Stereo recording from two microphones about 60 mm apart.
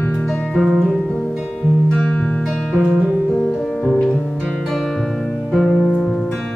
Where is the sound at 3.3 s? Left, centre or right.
Centre.